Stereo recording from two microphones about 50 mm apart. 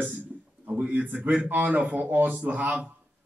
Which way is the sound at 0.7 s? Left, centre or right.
Right.